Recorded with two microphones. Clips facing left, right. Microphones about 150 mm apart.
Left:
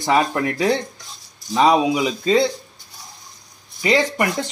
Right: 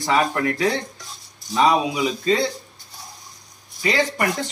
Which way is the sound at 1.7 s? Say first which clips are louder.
Left 3 dB; 20° left (ahead or behind).